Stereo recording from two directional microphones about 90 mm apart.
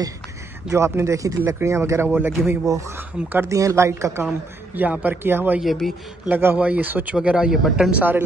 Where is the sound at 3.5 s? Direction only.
35° right (ahead or behind).